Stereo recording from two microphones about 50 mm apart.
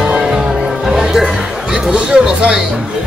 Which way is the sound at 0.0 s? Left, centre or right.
Centre.